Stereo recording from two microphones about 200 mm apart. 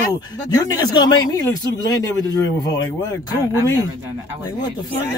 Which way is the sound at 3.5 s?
15° right (ahead or behind).